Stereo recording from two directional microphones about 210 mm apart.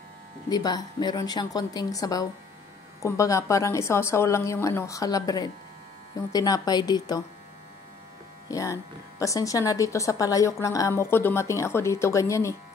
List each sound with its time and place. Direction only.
0.5 s a woman's voice: 20° left (ahead or behind)
8.5 s a woman's voice: 15° left (ahead or behind)